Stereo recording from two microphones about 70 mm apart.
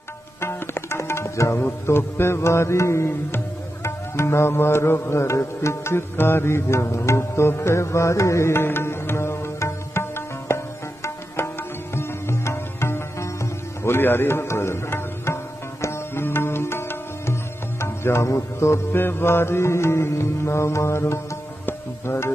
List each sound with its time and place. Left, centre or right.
0.4 s tabla: left
1.6 s music: left